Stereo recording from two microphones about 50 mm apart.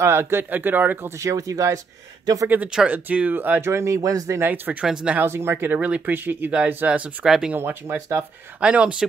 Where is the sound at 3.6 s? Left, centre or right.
Right.